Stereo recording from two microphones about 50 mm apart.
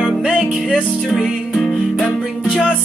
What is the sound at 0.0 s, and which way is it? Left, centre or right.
Music, centre.